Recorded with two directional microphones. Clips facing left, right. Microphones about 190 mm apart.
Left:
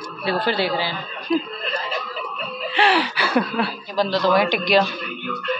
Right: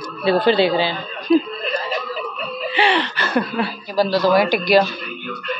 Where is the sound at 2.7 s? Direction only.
Centre (ahead or behind).